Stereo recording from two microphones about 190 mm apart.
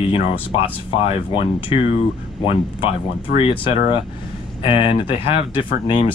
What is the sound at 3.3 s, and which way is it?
Speech, 50° left (ahead or behind).